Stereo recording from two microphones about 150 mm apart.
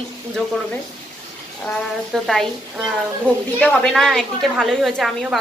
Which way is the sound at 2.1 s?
Centre (ahead or behind).